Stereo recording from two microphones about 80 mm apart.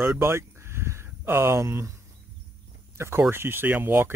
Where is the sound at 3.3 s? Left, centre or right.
Right.